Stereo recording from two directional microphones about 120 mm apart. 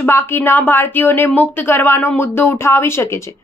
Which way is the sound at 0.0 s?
20° left (ahead or behind).